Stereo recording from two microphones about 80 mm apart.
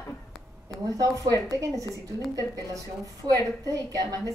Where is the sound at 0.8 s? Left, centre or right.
Right.